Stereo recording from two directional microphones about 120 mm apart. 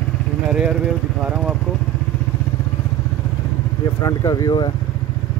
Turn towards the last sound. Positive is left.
turn(degrees=30)  # may be behind; listen again after turning